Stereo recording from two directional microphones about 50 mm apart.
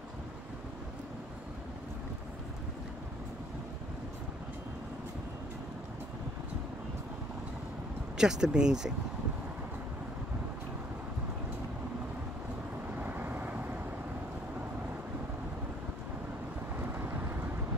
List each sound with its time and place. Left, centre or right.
8.2 s speech: centre
13.0 s vehicle: right